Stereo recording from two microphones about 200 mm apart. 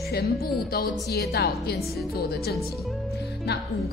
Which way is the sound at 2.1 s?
50° left (ahead or behind).